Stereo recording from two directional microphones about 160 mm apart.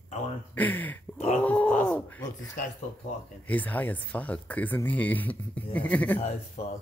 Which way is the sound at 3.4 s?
10° left (ahead or behind).